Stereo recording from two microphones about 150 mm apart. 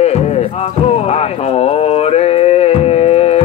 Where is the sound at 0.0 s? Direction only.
45° left (ahead or behind).